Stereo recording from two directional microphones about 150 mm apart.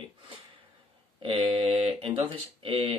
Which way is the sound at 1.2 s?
40° right (ahead or behind).